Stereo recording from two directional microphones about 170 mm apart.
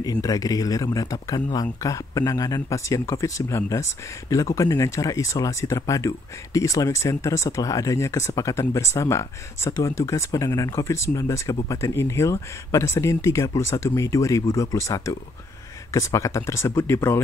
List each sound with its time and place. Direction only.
0.0 s speech: 20° left (ahead or behind)